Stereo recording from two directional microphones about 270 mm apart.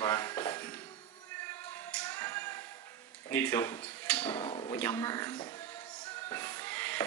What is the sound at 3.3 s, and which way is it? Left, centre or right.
Speech, centre.